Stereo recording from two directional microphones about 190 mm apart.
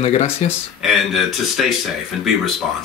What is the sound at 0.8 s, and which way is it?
Speech, centre (ahead or behind).